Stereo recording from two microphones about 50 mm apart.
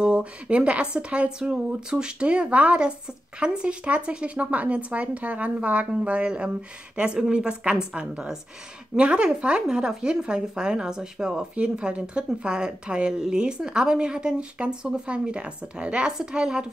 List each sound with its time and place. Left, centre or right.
0.0 s speech: right